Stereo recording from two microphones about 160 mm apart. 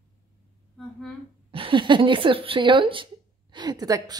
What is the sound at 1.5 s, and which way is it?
A woman's voice, 35° right (ahead or behind).